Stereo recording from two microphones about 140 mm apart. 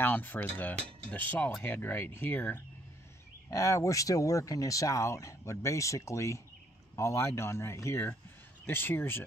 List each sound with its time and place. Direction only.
0.0 s speech: 15° left (ahead or behind)